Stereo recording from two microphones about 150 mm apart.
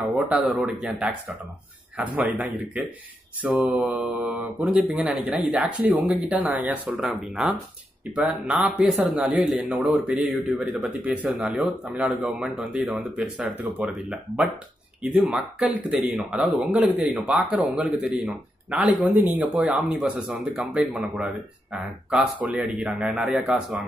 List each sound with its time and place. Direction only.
0.0 s speech: centre (ahead or behind)
2.1 s a man's voice: 10° right (ahead or behind)